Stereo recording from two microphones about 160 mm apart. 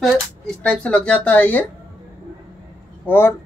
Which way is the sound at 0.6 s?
5° left (ahead or behind).